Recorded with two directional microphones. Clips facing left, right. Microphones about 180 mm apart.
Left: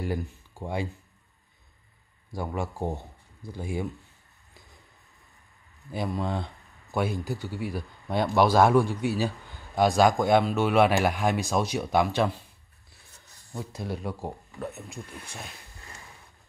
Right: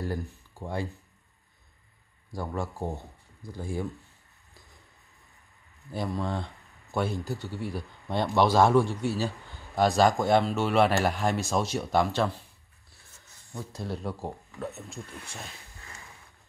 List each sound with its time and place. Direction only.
0.0 s speech: 20° left (ahead or behind)
2.4 s speech: 20° left (ahead or behind)
5.9 s speech: 15° left (ahead or behind)
13.5 s speech: 15° left (ahead or behind)